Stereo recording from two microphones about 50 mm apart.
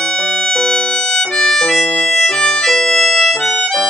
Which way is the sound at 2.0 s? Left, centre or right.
Centre.